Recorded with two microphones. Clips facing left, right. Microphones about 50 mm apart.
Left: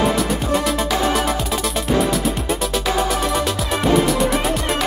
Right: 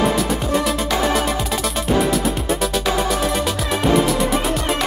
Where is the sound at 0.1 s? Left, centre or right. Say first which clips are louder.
Even; centre.